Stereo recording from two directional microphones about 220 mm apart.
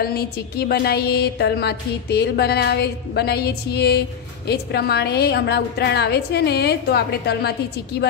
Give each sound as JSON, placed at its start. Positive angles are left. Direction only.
{"t": 0.0, "sound": "music", "side_deg": 45}